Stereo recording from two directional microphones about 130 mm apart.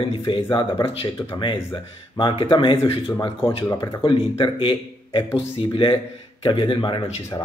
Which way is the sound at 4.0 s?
40° left (ahead or behind).